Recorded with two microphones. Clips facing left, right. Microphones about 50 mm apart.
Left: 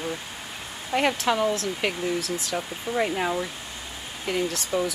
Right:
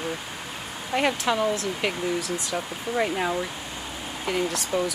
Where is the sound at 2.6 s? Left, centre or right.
Centre.